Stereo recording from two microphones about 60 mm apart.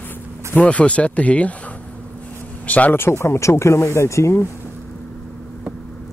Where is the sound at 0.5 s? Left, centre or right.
Left.